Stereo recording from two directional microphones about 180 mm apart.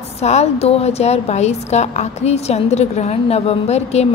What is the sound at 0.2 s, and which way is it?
A woman's voice, 35° left (ahead or behind).